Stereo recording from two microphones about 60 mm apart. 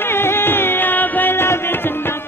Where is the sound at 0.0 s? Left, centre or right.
Left.